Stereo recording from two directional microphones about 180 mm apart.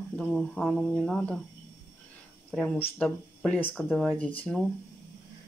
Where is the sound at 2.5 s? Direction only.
5° left (ahead or behind).